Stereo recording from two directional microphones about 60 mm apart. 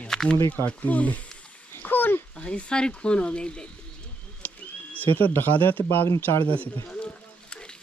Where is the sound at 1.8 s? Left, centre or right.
Left.